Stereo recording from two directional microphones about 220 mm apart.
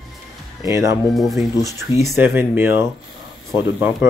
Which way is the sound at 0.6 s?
15° right (ahead or behind).